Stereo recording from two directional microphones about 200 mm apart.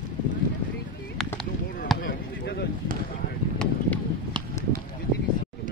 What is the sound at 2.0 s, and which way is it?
Basketball bounce, 55° left (ahead or behind).